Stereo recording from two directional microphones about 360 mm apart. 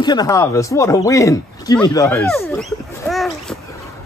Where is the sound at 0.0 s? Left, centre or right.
Centre.